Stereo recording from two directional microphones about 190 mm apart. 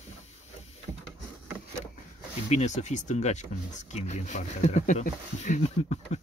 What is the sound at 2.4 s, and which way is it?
Speech, 35° left (ahead or behind).